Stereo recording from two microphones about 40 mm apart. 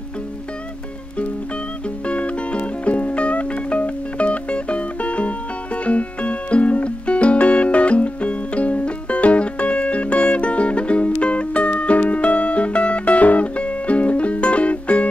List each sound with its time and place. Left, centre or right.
2.0 s music: left